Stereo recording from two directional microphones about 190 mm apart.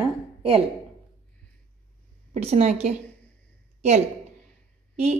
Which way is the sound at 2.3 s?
35° right (ahead or behind).